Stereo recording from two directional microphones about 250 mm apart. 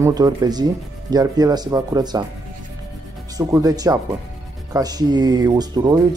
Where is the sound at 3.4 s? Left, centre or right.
Centre.